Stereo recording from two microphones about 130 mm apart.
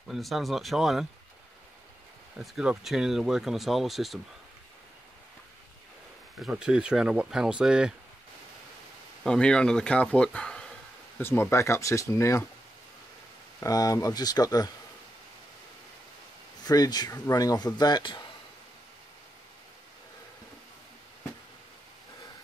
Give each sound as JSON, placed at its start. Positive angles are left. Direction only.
{"t": 0.1, "sound": "speech", "side_deg": 0}
{"t": 2.3, "sound": "speech", "side_deg": -5}
{"t": 6.4, "sound": "speech", "side_deg": -5}
{"t": 9.2, "sound": "speech", "side_deg": 5}
{"t": 11.1, "sound": "speech", "side_deg": 15}
{"t": 13.6, "sound": "speech", "side_deg": 30}
{"t": 16.6, "sound": "speech", "side_deg": 30}